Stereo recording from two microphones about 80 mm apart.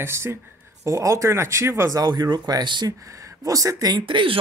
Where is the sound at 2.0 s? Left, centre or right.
Right.